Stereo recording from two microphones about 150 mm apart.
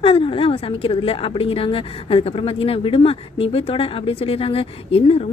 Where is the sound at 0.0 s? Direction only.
35° left (ahead or behind).